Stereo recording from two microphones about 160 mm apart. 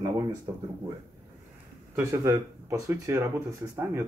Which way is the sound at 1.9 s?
15° right (ahead or behind).